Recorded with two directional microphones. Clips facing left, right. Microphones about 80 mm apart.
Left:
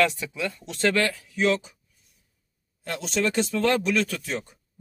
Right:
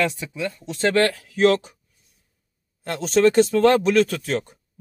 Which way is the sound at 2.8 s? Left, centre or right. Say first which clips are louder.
Right 9 dB; right.